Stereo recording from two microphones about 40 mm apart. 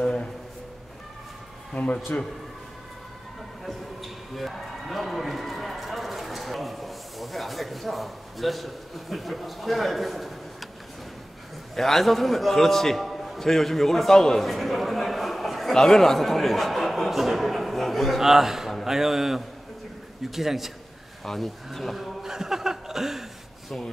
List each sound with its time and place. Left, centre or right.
0.0 s a sound: left
1.8 s speech: left
3.6 s a man's voice: centre
11.7 s a man's voice: centre
14.4 s a sound: centre
15.7 s speech: centre
18.2 s chuckle: centre
21.2 s a man's voice: centre
22.3 s chuckle: centre